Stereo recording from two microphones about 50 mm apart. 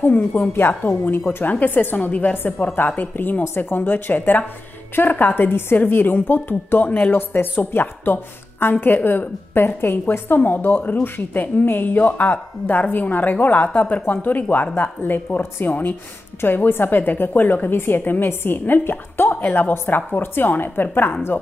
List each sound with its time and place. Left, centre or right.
0.0 s a woman's voice: left
6.8 s a woman's voice: left
7.1 s a woman's voice: left